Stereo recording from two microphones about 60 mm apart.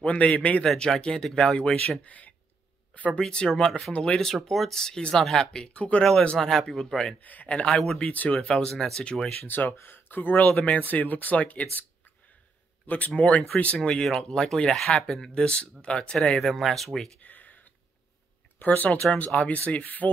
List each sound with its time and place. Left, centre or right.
0.0 s speech: left
2.9 s a sound: left
3.2 s speech: centre
6.2 s speech: centre
7.2 s speech: left
7.8 s speech: centre
8.1 s speech: left; by 9.3 s centre
9.4 s speech: left
12.8 s speech: left; by 17.1 s centre
17.2 s a sound: left
18.6 s speech: left